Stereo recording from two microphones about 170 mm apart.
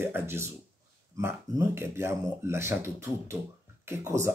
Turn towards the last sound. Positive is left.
turn(degrees=-15)  # may be behind; listen again after turning